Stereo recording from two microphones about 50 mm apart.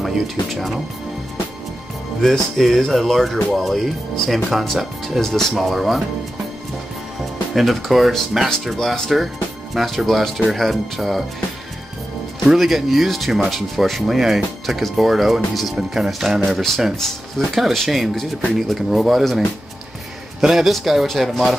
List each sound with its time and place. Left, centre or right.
0.0 s speech: centre
2.2 s speech: centre
7.5 s speech: centre
8.7 s speech: centre
12.4 s speech: centre